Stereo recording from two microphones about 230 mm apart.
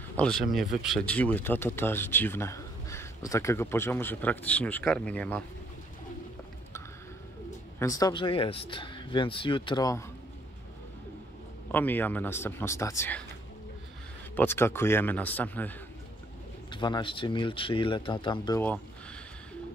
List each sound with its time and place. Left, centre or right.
0.2 s speech: centre
7.8 s speech: centre
11.7 s speech: centre
14.3 s speech: centre
16.7 s speech: left